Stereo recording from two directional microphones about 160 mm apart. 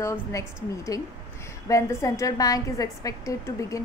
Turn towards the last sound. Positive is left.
turn(degrees=20)  # may be behind; listen again after turning